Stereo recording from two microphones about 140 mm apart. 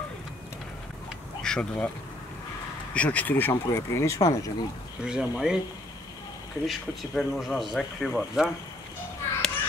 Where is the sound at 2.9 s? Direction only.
10° left (ahead or behind).